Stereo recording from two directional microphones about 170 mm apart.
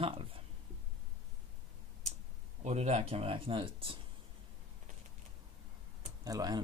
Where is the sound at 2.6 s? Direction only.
40° right (ahead or behind).